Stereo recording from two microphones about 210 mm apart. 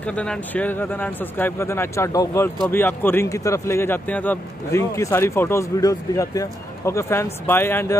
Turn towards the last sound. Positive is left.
turn(degrees=10)  # may be behind; listen again after turning